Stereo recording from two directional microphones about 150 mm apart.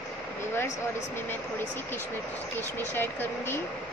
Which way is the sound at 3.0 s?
15° left (ahead or behind).